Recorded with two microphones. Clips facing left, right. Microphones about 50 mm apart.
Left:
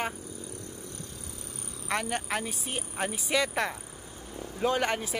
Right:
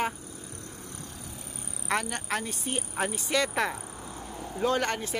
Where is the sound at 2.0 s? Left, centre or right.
Centre.